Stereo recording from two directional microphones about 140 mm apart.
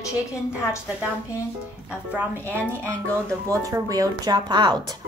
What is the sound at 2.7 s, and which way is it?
Speech, 10° left (ahead or behind).